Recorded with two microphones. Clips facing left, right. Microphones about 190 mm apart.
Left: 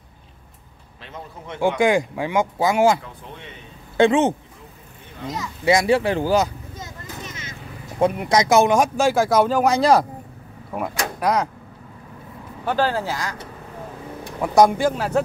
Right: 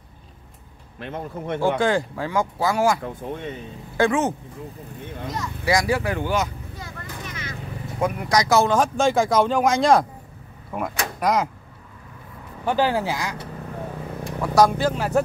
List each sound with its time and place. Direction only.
1.0 s speech: 55° right (ahead or behind)
1.6 s speech: 15° left (ahead or behind)
3.0 s speech: 50° right (ahead or behind)
3.9 s speech: 25° left (ahead or behind)
5.7 s speech: 25° left (ahead or behind)
6.7 s a sound: 20° left (ahead or behind)
8.0 s speech: 25° left (ahead or behind); by 11.4 s centre (ahead or behind)
12.6 s speech: 15° right (ahead or behind)
14.4 s speech: 20° left (ahead or behind)
15.0 s speech: 5° right (ahead or behind)